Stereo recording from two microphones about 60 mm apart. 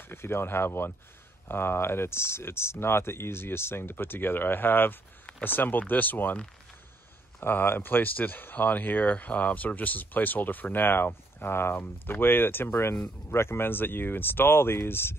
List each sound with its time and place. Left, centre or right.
0.1 s speech: left
7.3 s speech: left